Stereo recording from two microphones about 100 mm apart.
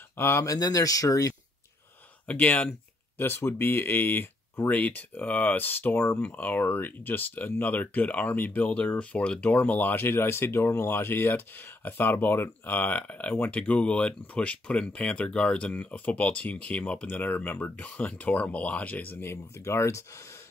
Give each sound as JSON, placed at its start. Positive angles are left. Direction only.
{"t": 0.2, "sound": "speech", "side_deg": 25}
{"t": 2.2, "sound": "speech", "side_deg": 15}